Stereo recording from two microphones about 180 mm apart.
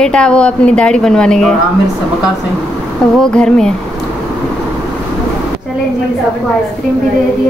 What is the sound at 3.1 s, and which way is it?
Speech, 5° left (ahead or behind).